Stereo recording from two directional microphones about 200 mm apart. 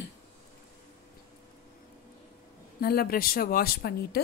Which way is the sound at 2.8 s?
50° left (ahead or behind).